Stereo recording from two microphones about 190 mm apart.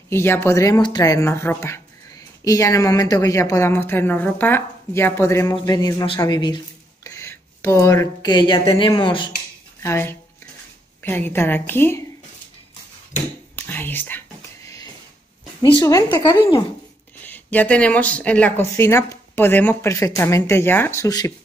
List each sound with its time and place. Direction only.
0.1 s speech: 10° left (ahead or behind)
9.8 s speech: 10° left (ahead or behind)
13.7 s whispering: 10° left (ahead or behind)
15.8 s a woman's voice: 20° left (ahead or behind)
17.2 s speech: 10° left (ahead or behind)